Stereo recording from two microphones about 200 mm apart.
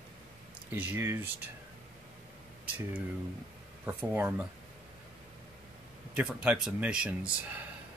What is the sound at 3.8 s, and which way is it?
Speech, 10° right (ahead or behind).